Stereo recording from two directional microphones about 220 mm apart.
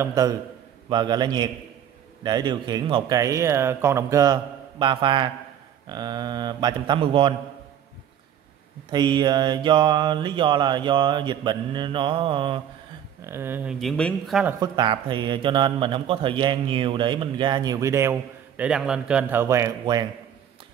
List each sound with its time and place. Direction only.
0.0 s speech: 15° right (ahead or behind)
0.8 s mantra: 20° right (ahead or behind)
2.2 s speech: 20° right (ahead or behind)
5.9 s mantra: 20° right (ahead or behind)
8.9 s mantra: 20° right (ahead or behind)
13.2 s speech: 10° right (ahead or behind)
14.6 s mantra: 20° right (ahead or behind)
18.6 s speech: 5° right (ahead or behind)